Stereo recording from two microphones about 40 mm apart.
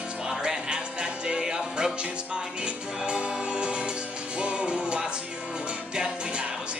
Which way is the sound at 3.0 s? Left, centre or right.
Right.